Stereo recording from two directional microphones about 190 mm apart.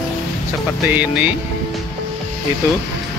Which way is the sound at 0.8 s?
10° right (ahead or behind).